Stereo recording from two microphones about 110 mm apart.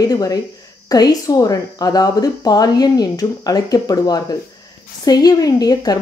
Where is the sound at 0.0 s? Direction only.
35° left (ahead or behind).